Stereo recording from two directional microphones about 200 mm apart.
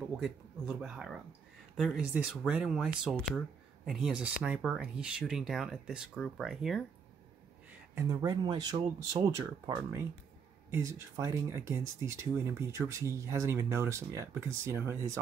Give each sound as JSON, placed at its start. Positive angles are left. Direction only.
{"t": 0.2, "sound": "speech", "side_deg": -5}
{"t": 7.9, "sound": "speech", "side_deg": -15}
{"t": 10.7, "sound": "speech", "side_deg": -15}